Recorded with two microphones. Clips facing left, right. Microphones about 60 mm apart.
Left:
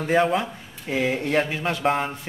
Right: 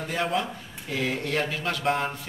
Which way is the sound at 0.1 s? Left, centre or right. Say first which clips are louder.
Left 7 dB; left.